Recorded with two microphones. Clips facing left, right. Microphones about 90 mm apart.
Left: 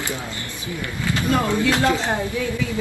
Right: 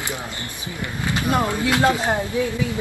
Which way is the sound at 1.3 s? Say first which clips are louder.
Left 1 dB; 20° right (ahead or behind).